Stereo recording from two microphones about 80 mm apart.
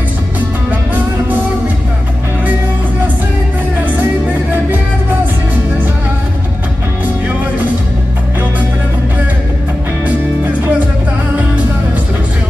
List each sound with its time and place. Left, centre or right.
10.0 s music: right